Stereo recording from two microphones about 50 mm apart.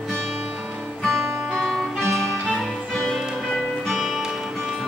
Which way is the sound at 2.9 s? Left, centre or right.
Centre.